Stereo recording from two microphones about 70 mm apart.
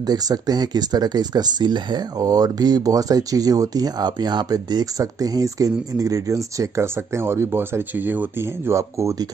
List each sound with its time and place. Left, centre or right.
0.0 s speech: right
4.9 s speech: right
8.7 s speech: right